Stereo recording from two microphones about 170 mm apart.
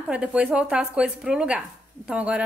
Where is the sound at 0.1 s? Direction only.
5° right (ahead or behind).